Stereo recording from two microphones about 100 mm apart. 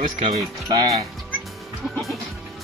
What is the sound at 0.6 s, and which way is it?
Speech, 35° right (ahead or behind).